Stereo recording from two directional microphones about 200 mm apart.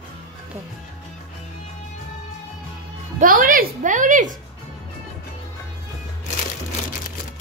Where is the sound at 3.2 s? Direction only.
45° right (ahead or behind).